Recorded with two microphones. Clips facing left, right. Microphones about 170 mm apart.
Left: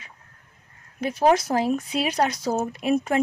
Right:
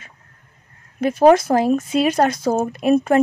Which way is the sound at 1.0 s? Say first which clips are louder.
Right 7 dB; 50° right (ahead or behind).